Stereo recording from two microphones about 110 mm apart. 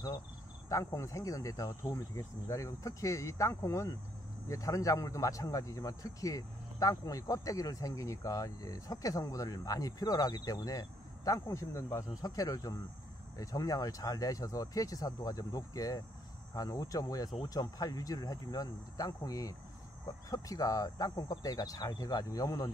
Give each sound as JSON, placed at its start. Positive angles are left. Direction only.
{"t": 0.7, "sound": "speech", "side_deg": 30}